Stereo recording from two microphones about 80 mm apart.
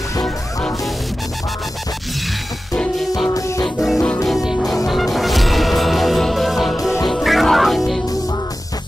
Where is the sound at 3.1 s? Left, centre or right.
Left.